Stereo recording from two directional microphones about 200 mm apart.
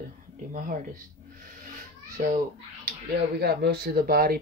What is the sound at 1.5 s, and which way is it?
Cat, 40° right (ahead or behind).